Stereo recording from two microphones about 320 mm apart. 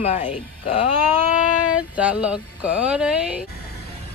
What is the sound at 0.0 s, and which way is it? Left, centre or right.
Speech, left.